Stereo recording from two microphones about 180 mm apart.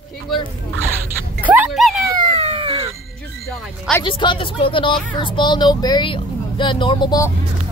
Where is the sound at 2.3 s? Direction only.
30° right (ahead or behind).